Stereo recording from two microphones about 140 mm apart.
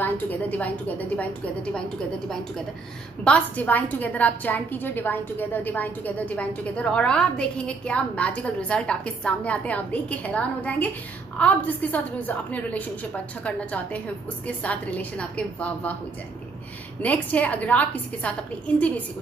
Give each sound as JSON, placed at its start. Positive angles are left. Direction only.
{"t": 0.0, "sound": "a woman's voice", "side_deg": 10}
{"t": 3.3, "sound": "a woman's voice", "side_deg": 10}
{"t": 17.0, "sound": "a woman's voice", "side_deg": 10}